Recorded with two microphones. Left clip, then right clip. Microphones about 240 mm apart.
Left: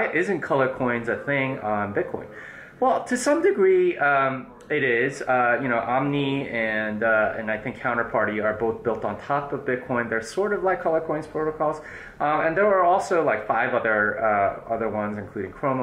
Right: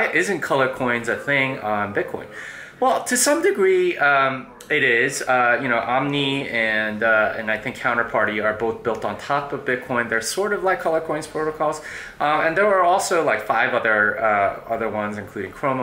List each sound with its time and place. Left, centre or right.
0.0 s speech: centre
10.4 s speech: centre
12.3 s speech: centre